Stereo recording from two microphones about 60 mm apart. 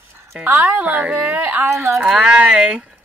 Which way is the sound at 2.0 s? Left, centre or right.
Centre.